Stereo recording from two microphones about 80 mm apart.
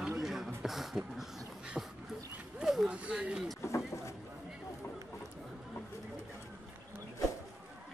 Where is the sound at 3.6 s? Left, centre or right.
Left.